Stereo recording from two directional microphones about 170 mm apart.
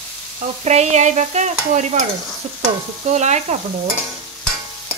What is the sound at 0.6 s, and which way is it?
Stir, 40° right (ahead or behind).